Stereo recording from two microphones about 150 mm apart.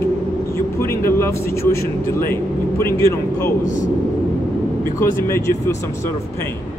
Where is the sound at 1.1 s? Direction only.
15° left (ahead or behind).